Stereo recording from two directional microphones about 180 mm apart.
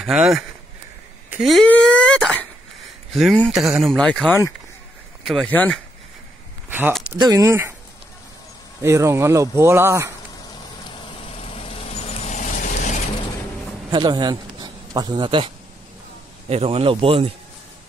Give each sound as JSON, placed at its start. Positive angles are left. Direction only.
{"t": 0.0, "sound": "speech", "side_deg": 0}
{"t": 7.2, "sound": "speech", "side_deg": -20}
{"t": 8.8, "sound": "speech", "side_deg": -15}
{"t": 11.3, "sound": "vehicle", "side_deg": 30}
{"t": 13.8, "sound": "a man's voice", "side_deg": -25}